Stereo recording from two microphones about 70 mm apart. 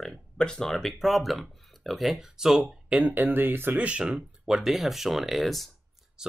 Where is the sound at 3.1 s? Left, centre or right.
Right.